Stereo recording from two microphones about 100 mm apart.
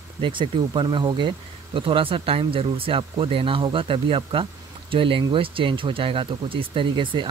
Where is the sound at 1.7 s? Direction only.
60° right (ahead or behind).